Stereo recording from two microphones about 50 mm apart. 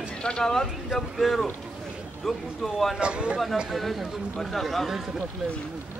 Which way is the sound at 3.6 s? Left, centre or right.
Centre.